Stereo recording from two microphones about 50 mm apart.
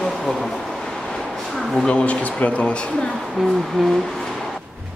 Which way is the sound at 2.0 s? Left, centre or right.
Left.